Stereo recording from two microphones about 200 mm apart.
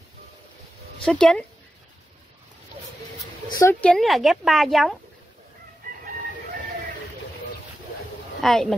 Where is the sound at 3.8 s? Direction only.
Centre (ahead or behind).